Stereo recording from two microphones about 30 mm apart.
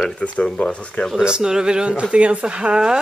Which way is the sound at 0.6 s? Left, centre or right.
Left.